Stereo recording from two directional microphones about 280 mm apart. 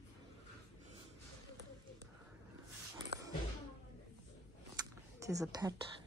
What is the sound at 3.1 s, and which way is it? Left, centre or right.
Music, right.